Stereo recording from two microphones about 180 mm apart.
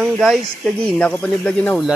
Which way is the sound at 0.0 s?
Centre (ahead or behind).